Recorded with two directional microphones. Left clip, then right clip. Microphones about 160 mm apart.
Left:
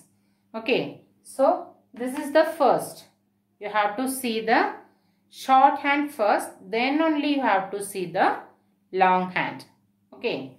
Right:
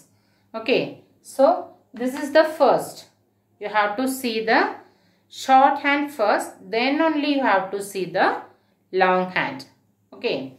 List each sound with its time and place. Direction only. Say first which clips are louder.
0.5 s a woman's voice: right 3 dB; 20° left (ahead or behind)
2.0 s speech: right 3 dB; 20° left (ahead or behind)